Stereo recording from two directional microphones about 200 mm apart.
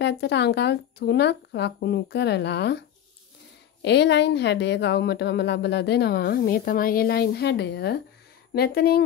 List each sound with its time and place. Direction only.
0.0 s a woman's voice: 55° left (ahead or behind)
3.8 s a woman's voice: 60° left (ahead or behind)